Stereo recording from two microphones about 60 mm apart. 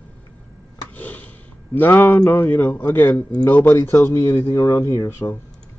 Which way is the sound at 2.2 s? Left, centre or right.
Left.